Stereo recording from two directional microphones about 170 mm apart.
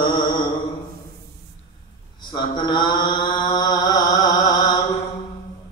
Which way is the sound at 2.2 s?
25° left (ahead or behind).